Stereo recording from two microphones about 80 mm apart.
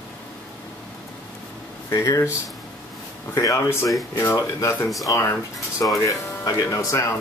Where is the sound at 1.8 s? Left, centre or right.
Left.